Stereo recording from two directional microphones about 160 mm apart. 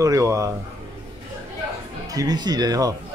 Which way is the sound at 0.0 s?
20° right (ahead or behind).